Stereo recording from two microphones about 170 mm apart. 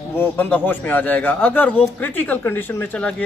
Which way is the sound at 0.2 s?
10° left (ahead or behind).